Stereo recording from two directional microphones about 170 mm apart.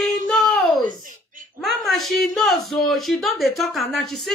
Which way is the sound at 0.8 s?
50° right (ahead or behind).